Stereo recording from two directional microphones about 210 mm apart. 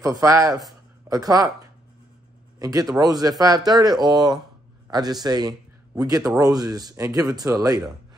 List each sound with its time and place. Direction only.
0.0 s a man's voice: 15° right (ahead or behind)
2.6 s a man's voice: 15° right (ahead or behind)